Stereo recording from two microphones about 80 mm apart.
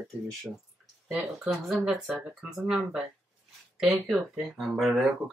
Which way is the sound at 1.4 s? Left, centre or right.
Centre.